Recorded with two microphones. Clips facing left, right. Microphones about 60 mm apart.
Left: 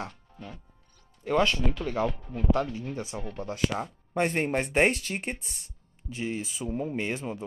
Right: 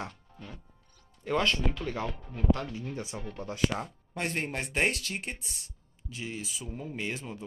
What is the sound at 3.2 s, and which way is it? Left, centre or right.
Speech, left.